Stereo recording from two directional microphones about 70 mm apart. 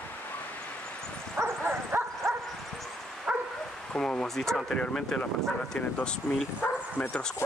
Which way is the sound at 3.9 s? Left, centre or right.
Centre.